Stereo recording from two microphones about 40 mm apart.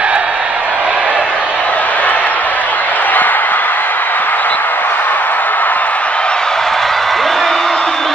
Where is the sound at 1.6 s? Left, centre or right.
Left.